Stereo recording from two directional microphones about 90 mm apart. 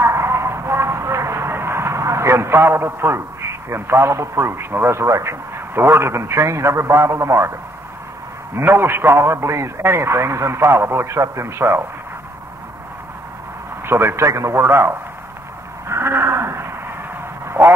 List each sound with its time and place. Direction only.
0.0 s speech: 30° right (ahead or behind)
8.5 s a man's voice: 25° right (ahead or behind)
13.8 s a man's voice: 25° right (ahead or behind)
15.9 s a sound: 25° right (ahead or behind)